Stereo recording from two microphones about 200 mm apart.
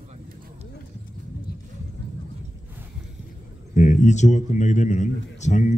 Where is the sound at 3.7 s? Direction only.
35° left (ahead or behind).